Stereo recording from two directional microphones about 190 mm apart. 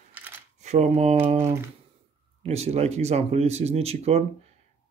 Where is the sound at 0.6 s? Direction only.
35° right (ahead or behind).